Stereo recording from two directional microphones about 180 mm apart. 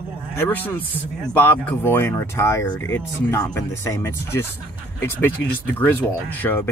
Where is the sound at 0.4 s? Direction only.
10° left (ahead or behind).